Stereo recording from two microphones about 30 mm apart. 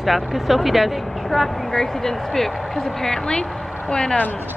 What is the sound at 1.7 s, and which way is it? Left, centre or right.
Speech, centre.